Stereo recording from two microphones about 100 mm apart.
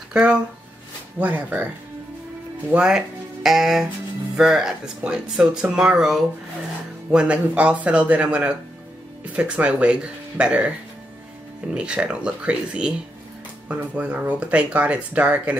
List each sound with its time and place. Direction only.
0.1 s speech: 10° right (ahead or behind)
2.7 s speech: 10° right (ahead or behind)
11.7 s speech: 10° right (ahead or behind)